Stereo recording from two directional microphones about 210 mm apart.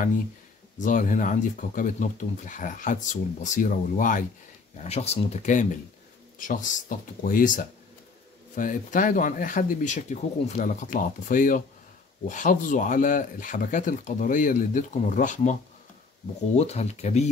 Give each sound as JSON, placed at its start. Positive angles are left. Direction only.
{"t": 0.7, "sound": "speech", "side_deg": 40}
{"t": 16.5, "sound": "speech", "side_deg": 30}